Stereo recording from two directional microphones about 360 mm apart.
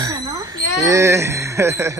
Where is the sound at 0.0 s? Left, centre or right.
Centre.